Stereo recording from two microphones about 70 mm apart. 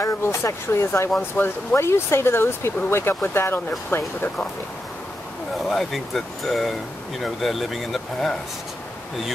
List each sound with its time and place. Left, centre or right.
0.0 s speech: left
5.6 s speech: centre